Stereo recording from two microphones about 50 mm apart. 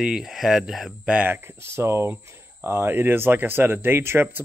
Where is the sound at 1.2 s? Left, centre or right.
Right.